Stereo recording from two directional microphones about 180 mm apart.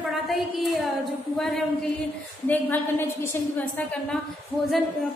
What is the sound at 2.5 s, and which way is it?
A woman's voice, 10° left (ahead or behind).